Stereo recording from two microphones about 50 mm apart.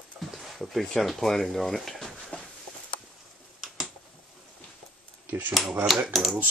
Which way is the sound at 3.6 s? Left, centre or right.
Centre.